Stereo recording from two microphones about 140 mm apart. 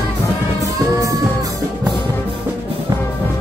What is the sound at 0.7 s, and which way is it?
Music, 25° right (ahead or behind).